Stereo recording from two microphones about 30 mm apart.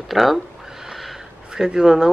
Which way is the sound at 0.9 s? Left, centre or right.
Centre.